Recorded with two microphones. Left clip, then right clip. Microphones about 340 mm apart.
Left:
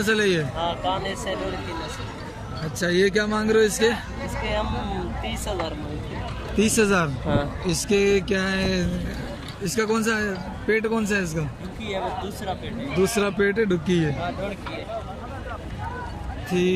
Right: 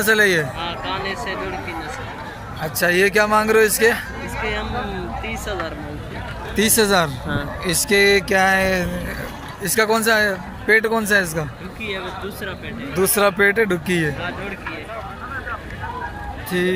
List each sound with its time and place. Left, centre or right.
0.0 s speech: centre
0.6 s speech: left
2.8 s speech: centre
5.2 s speech: left
6.5 s speech: centre
12.9 s speech: centre
16.4 s speech: centre